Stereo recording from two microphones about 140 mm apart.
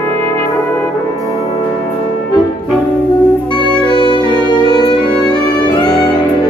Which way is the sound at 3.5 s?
35° left (ahead or behind).